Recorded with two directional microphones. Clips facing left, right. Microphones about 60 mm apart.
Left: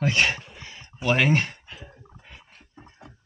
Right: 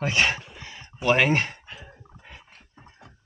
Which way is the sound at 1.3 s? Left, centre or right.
Right.